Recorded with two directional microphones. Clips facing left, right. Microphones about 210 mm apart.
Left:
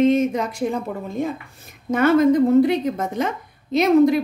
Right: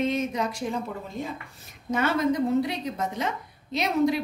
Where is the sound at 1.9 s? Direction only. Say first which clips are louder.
Left 9 dB; 50° left (ahead or behind).